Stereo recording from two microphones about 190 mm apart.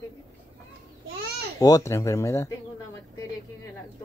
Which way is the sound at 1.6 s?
15° left (ahead or behind).